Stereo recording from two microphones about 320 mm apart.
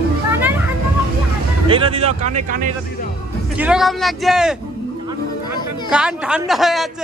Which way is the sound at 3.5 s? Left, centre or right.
Centre.